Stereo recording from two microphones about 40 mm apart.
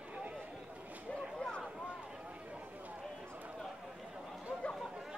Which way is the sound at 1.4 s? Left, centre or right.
Left.